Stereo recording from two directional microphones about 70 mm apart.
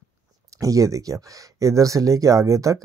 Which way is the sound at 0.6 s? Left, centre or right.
Right.